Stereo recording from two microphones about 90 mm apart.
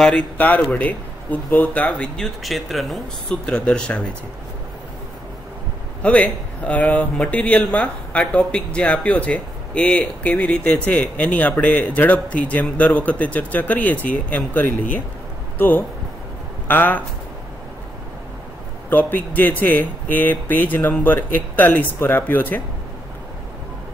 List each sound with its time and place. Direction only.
0.0 s speech: 10° left (ahead or behind)
3.4 s speech: 10° left (ahead or behind)
6.0 s speech: 15° left (ahead or behind)
18.9 s speech: 20° left (ahead or behind)